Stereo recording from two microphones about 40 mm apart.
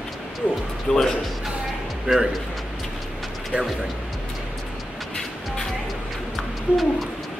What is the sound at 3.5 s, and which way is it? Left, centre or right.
Speech, right.